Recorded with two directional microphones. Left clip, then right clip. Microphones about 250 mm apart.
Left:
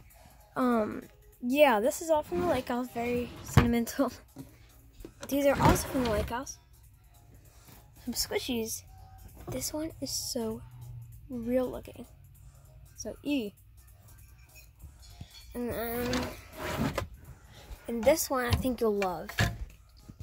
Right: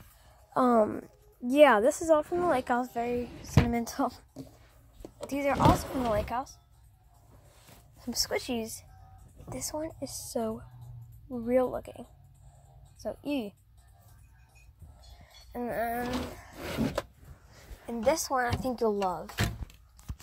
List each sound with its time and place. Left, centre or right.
0.5 s speech: centre
5.3 s speech: centre
8.1 s a woman's voice: centre
8.4 s speech: centre
13.2 s speech: right
15.5 s speech: centre
17.8 s a woman's voice: centre